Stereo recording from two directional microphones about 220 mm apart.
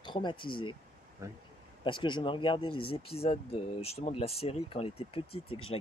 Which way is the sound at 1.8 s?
20° left (ahead or behind).